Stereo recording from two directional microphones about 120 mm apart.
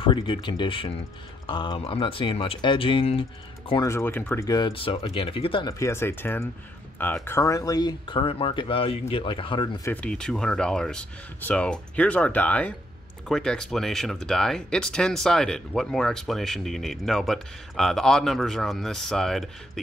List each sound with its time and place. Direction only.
0.0 s speech: 45° left (ahead or behind)
3.8 s speech: 20° left (ahead or behind)
4.5 s speech: 40° left (ahead or behind)
5.7 s speech: 25° left (ahead or behind)
8.1 s speech: 45° left (ahead or behind)
10.0 s speech: 5° left (ahead or behind)